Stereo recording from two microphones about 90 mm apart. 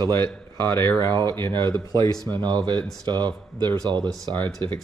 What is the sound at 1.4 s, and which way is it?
Speech, 55° right (ahead or behind).